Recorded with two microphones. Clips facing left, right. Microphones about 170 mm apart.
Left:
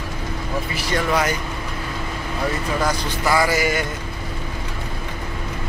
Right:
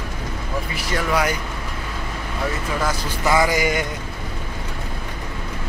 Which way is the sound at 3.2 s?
20° right (ahead or behind).